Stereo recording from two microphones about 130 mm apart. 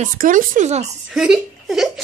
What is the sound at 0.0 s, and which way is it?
Speech, 90° right.